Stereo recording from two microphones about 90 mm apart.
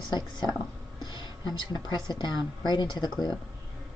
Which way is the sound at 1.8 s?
55° left (ahead or behind).